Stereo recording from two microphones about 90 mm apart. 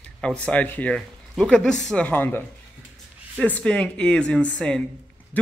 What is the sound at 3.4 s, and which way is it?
Speech, 10° left (ahead or behind).